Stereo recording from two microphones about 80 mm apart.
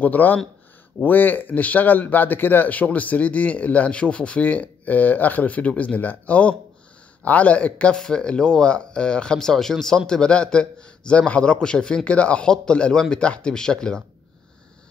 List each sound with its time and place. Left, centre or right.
0.0 s speech: left